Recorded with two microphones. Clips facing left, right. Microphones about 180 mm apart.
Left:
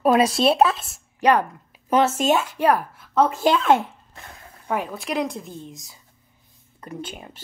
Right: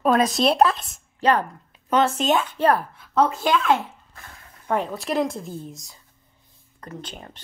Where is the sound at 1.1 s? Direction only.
15° left (ahead or behind).